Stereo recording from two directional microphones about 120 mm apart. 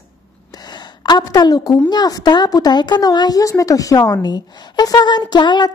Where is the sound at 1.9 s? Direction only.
35° left (ahead or behind).